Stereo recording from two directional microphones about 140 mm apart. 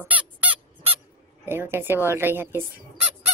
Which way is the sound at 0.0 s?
10° right (ahead or behind).